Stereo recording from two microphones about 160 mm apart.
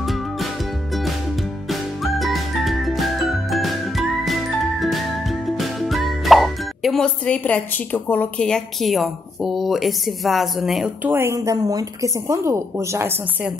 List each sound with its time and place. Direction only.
0.0 s music: centre (ahead or behind)
1.7 s music: centre (ahead or behind)
11.1 s speech: 15° right (ahead or behind)